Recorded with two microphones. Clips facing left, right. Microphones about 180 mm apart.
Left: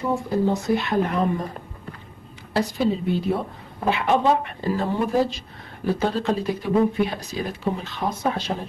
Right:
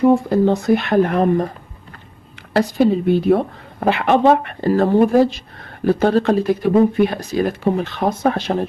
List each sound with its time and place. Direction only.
0.3 s a woman's voice: 70° right (ahead or behind)
2.5 s a woman's voice: 60° right (ahead or behind)